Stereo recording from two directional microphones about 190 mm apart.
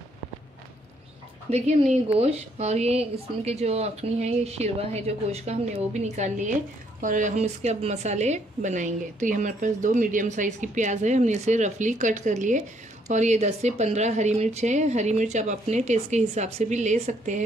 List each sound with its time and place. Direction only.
1.5 s a woman's voice: 35° right (ahead or behind)